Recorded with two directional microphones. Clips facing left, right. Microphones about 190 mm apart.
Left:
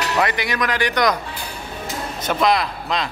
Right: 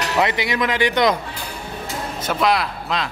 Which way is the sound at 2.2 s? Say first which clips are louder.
Left 1 dB; 5° right (ahead or behind).